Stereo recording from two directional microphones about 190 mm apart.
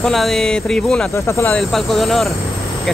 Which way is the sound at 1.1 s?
15° left (ahead or behind).